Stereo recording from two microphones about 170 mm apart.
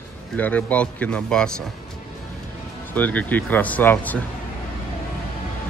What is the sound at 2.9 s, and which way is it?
Speech, 10° left (ahead or behind).